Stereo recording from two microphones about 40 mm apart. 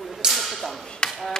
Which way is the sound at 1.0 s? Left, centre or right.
Left.